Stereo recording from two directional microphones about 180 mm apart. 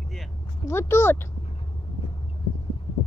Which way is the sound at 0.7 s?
15° left (ahead or behind).